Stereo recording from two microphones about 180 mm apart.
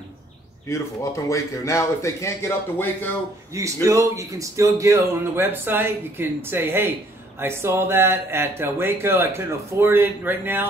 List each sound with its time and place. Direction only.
0.7 s a man's voice: 15° left (ahead or behind)
3.5 s speech: 15° right (ahead or behind)